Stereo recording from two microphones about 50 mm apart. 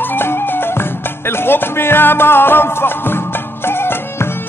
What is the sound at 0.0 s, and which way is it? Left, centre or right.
Music, left.